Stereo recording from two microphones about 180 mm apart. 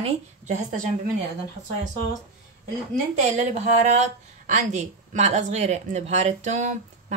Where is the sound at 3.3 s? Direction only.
40° right (ahead or behind).